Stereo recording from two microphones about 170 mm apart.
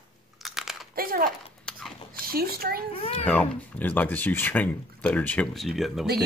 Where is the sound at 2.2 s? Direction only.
60° right (ahead or behind).